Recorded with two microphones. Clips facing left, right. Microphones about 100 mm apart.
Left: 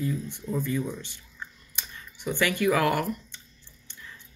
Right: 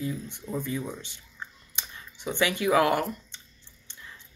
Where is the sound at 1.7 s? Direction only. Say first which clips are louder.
Even; 20° right (ahead or behind).